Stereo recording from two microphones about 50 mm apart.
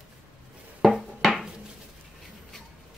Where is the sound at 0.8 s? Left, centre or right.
Centre.